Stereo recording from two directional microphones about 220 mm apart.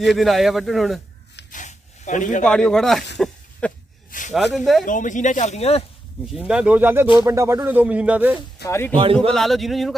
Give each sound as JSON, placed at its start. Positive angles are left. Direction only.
{"t": 0.0, "sound": "speech", "side_deg": 0}
{"t": 1.5, "sound": "a sound", "side_deg": 35}
{"t": 2.4, "sound": "speech", "side_deg": 5}
{"t": 4.1, "sound": "a sound", "side_deg": 40}
{"t": 4.6, "sound": "speech", "side_deg": 0}
{"t": 4.8, "sound": "speech", "side_deg": 35}
{"t": 6.3, "sound": "speech", "side_deg": -5}
{"t": 8.6, "sound": "speech", "side_deg": 10}
{"t": 9.3, "sound": "speech", "side_deg": 0}